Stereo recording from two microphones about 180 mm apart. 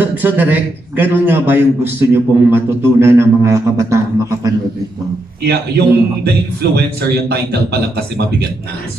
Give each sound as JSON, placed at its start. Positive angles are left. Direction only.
{"t": 0.0, "sound": "a man's voice", "side_deg": -10}
{"t": 5.5, "sound": "a man's voice", "side_deg": -65}